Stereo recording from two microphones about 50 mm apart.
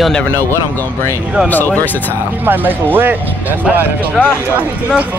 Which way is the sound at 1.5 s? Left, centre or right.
Left.